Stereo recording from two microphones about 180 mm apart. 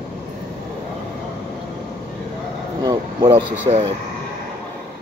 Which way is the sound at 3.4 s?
35° right (ahead or behind).